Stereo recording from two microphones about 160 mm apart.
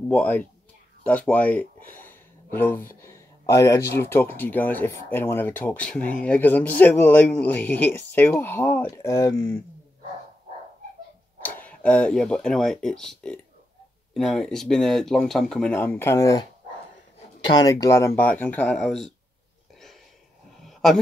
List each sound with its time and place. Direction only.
0.1 s speech: 10° left (ahead or behind)
2.0 s a sound: 15° left (ahead or behind)
3.0 s speech: 20° left (ahead or behind)
8.9 s speech: 20° left (ahead or behind)
11.4 s speech: 10° left (ahead or behind)
17.6 s speech: 20° left (ahead or behind); by 19.1 s centre (ahead or behind)
20.6 s a sound: centre (ahead or behind)